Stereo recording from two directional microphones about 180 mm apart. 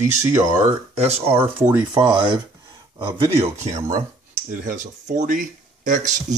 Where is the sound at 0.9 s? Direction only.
35° right (ahead or behind).